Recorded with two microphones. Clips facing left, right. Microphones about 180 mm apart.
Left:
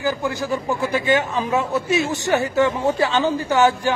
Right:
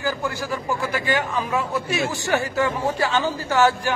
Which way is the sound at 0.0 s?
20° left (ahead or behind).